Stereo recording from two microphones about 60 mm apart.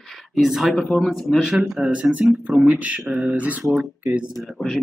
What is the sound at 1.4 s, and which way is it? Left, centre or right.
Speech, centre.